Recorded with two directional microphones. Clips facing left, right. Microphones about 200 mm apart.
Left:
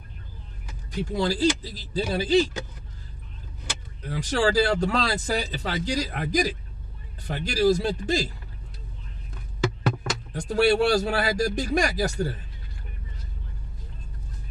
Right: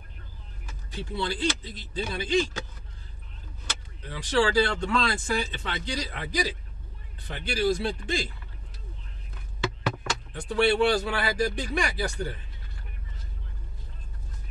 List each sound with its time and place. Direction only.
1.1 s speech: 40° left (ahead or behind)
4.0 s speech: 45° left (ahead or behind)
9.6 s a sound: 40° left (ahead or behind)
11.1 s speech: 40° left (ahead or behind)